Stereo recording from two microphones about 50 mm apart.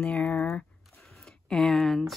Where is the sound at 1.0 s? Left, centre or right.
Centre.